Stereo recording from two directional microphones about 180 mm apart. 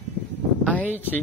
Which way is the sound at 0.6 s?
5° left (ahead or behind).